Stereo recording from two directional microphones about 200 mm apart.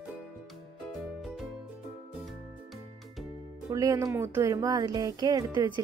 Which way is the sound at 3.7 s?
15° right (ahead or behind).